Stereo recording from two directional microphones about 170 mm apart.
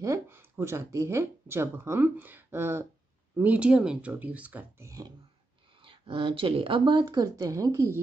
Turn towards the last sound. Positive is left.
turn(degrees=-15)  # may be behind; listen again after turning